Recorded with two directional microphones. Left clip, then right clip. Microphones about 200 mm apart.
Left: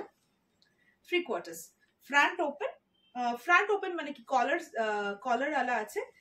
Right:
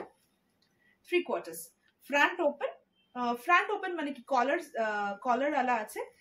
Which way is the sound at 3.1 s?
15° left (ahead or behind).